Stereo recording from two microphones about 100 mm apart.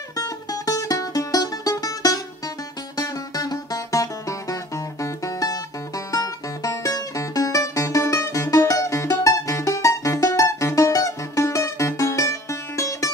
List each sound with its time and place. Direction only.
0.1 s music: 35° left (ahead or behind)